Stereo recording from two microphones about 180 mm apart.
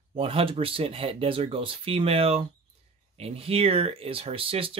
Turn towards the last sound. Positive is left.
turn(degrees=-30)  # may be behind; listen again after turning